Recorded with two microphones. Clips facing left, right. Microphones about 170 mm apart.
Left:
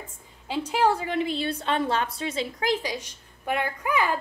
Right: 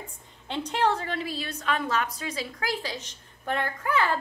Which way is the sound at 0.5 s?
5° left (ahead or behind).